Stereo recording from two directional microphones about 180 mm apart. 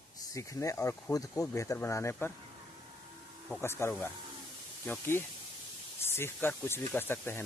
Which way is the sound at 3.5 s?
15° left (ahead or behind).